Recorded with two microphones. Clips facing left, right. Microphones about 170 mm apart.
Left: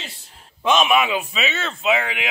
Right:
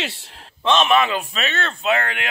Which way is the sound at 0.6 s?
10° left (ahead or behind).